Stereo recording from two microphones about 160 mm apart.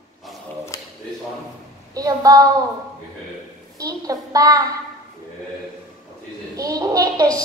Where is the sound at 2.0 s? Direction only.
20° right (ahead or behind).